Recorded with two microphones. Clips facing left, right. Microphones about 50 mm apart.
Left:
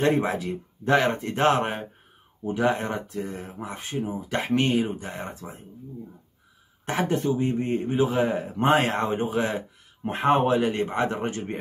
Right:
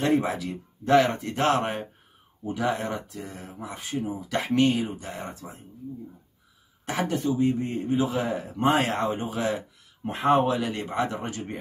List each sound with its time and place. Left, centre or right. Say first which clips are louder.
0.0 s a man's voice: left 1 dB; left
1.6 s speech: left 1 dB; centre
2.5 s a man's voice: left 3 dB; left
6.9 s a man's voice: left 2 dB; left